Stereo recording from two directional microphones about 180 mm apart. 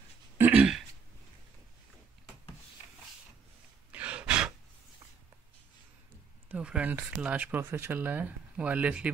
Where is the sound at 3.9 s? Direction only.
5° right (ahead or behind).